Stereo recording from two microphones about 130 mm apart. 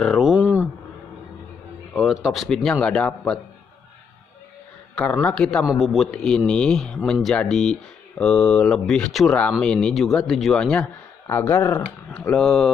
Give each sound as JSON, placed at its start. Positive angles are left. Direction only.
{"t": 0.0, "sound": "a sound", "side_deg": 0}
{"t": 2.2, "sound": "a man's voice", "side_deg": 0}
{"t": 5.2, "sound": "a man's voice", "side_deg": 5}
{"t": 11.2, "sound": "speech", "side_deg": 20}
{"t": 12.2, "sound": "a man's voice", "side_deg": 5}